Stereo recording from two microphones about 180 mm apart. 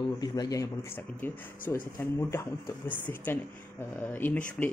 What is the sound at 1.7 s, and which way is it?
Speech, 15° left (ahead or behind).